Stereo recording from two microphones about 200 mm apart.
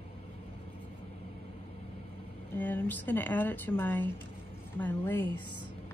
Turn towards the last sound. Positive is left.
turn(degrees=10)  # may be behind; listen again after turning